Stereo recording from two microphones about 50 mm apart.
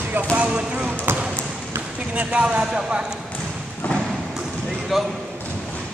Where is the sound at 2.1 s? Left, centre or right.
Right.